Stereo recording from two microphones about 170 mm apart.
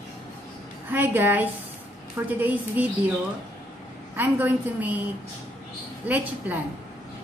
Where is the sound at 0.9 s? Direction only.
10° right (ahead or behind).